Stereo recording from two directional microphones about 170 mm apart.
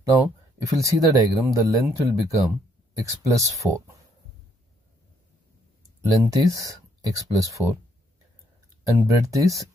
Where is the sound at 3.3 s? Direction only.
20° right (ahead or behind).